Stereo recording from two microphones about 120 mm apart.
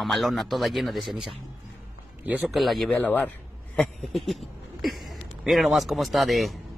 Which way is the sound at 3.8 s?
Centre (ahead or behind).